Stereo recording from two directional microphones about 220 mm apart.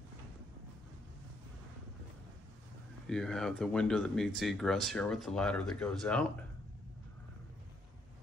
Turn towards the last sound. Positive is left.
turn(degrees=5)  # may be behind; listen again after turning